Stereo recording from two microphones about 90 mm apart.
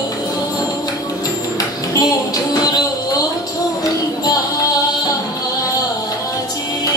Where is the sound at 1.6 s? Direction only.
40° left (ahead or behind).